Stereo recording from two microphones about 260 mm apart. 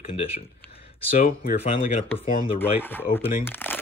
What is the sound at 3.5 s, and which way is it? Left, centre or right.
Speech, centre.